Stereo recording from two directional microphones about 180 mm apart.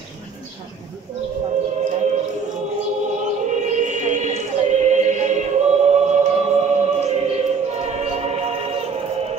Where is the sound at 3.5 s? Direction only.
40° right (ahead or behind).